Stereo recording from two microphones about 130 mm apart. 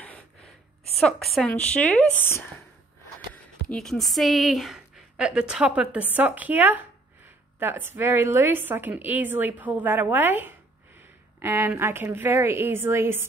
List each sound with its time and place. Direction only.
0.9 s a woman's voice: centre (ahead or behind); by 2.4 s 15° left (ahead or behind)
3.6 s a woman's voice: 5° left (ahead or behind); by 13.3 s 20° right (ahead or behind)